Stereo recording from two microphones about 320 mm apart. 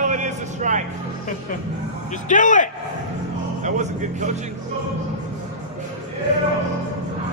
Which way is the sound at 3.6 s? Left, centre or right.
Right.